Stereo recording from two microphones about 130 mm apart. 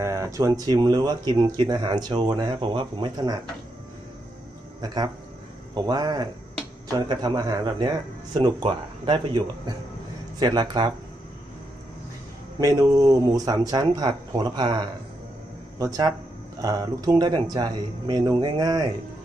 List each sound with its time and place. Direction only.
0.0 s speech: 25° right (ahead or behind)
4.8 s speech: 30° right (ahead or behind)
12.5 s speech: 30° right (ahead or behind)
16.6 s speech: 30° right (ahead or behind)